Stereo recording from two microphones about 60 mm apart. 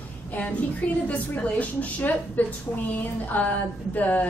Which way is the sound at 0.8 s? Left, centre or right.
Centre.